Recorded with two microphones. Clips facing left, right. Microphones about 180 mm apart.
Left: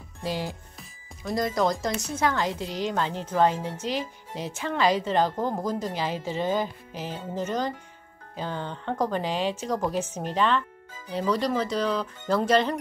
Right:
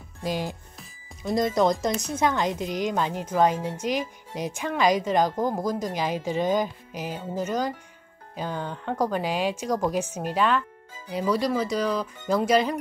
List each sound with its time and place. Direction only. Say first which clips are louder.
0.2 s a woman's voice: right 2 dB; 15° right (ahead or behind)